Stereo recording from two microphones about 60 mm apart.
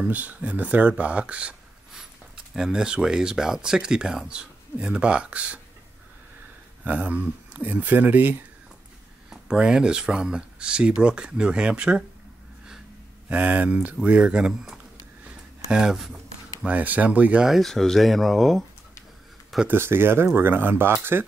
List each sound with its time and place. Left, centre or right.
0.0 s speech: right
2.0 s speech: centre
6.8 s speech: right
9.3 s speech: centre
13.3 s speech: right
15.2 s a sound: centre
16.6 s speech: right
17.6 s speech: centre
19.7 s speech: right